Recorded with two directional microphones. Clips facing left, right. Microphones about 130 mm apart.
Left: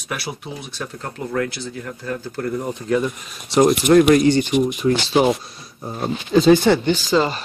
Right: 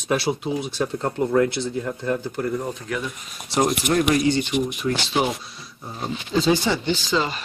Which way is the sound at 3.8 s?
50° left (ahead or behind).